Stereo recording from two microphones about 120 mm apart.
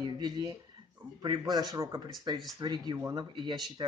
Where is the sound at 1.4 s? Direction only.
35° right (ahead or behind).